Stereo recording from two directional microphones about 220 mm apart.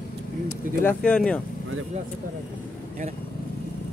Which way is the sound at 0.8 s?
5° left (ahead or behind).